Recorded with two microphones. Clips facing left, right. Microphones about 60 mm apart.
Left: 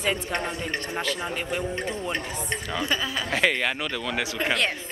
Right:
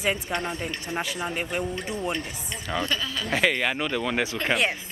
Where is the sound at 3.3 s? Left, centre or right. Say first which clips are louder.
Right 1 dB; centre.